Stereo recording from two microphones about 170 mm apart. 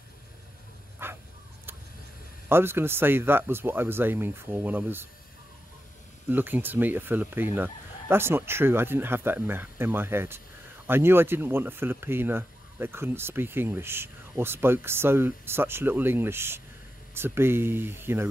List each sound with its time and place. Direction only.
1.0 s a sound: 15° right (ahead or behind)
2.5 s speech: 15° right (ahead or behind)
6.2 s speech: 10° right (ahead or behind)